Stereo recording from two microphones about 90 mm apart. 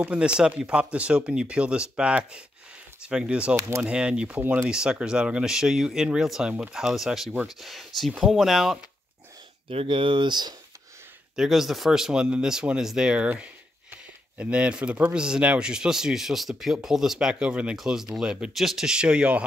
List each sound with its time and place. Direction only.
0.0 s speech: 10° right (ahead or behind)
3.5 s speech: 30° right (ahead or behind)
3.8 s speech: 10° right (ahead or behind)
9.7 s speech: 80° right; by 10.5 s 55° right (ahead or behind)
11.3 s speech: 5° right (ahead or behind)